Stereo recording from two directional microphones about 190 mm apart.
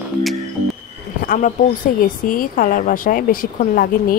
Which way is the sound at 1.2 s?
45° left (ahead or behind).